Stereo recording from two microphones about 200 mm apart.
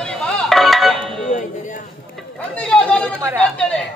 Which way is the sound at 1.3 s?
40° left (ahead or behind).